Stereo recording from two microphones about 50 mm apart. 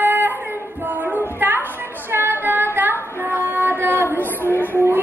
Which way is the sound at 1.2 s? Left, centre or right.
Right.